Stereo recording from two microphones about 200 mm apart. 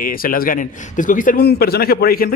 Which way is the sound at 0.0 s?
45° left (ahead or behind).